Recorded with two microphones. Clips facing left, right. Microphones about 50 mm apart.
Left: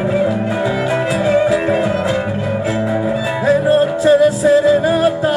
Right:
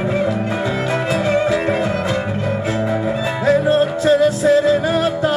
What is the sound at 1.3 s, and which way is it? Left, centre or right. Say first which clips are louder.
Music: left 4 dB; centre.